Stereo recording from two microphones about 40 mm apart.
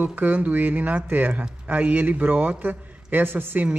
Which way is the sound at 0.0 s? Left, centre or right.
Right.